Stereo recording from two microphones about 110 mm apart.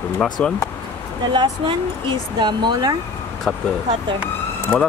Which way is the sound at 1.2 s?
45° right (ahead or behind).